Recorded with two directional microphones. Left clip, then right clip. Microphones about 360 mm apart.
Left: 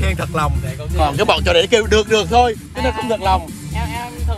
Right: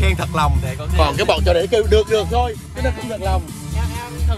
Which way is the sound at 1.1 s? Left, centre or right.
Centre.